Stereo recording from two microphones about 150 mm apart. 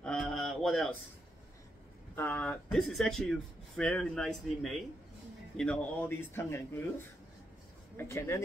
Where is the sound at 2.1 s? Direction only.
10° left (ahead or behind).